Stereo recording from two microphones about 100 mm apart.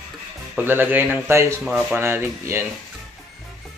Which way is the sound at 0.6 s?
20° right (ahead or behind).